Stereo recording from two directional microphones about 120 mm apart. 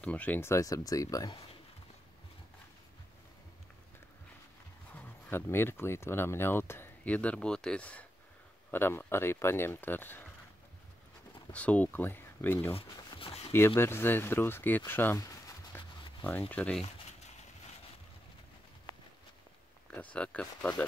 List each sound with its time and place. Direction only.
0.0 s speech: 10° left (ahead or behind); by 1.4 s 30° left (ahead or behind)
4.9 s speech: 15° left (ahead or behind)
11.5 s speech: 10° left (ahead or behind)
12.7 s a sound: 50° left (ahead or behind)
13.5 s speech: 20° left (ahead or behind)
15.1 s a sound: 30° left (ahead or behind)
15.7 s a sound: 20° left (ahead or behind)
16.3 s speech: 15° left (ahead or behind)
19.9 s speech: 10° left (ahead or behind)